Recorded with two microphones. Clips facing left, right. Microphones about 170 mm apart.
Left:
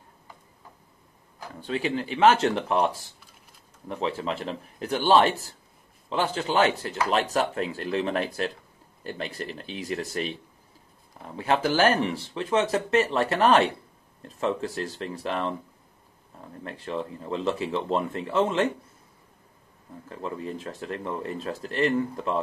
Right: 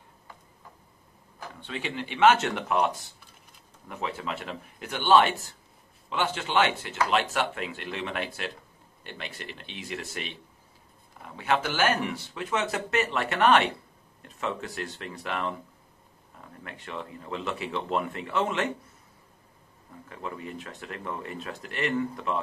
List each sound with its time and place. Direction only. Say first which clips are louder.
1.6 s speech: left 7 dB; 35° left (ahead or behind)
20.1 s speech: left 4 dB; 30° left (ahead or behind)